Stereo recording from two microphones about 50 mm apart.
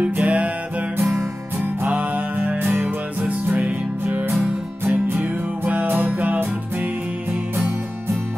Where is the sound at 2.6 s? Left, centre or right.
Right.